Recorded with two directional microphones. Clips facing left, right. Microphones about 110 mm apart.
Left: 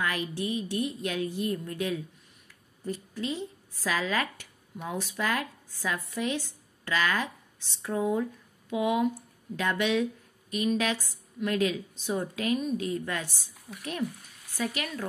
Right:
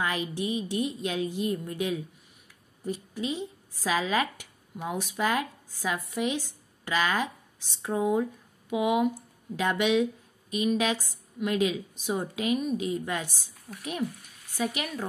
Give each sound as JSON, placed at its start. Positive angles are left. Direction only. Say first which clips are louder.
{"t": 0.0, "sound": "a woman's voice", "louder": "right 1 dB", "side_deg": -20}
{"t": 14.6, "sound": "a woman's voice", "louder": "right 2 dB", "side_deg": -20}